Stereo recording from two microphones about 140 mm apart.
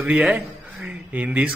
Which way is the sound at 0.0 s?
5° right (ahead or behind).